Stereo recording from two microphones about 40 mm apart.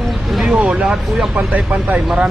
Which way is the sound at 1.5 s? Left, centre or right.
Right.